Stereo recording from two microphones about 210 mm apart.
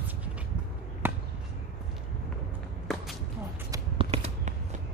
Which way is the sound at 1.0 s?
10° right (ahead or behind).